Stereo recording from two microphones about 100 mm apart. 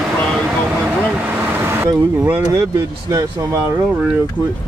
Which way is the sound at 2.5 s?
35° right (ahead or behind).